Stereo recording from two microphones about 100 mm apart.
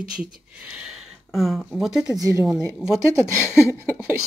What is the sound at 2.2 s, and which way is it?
Speech, 30° right (ahead or behind).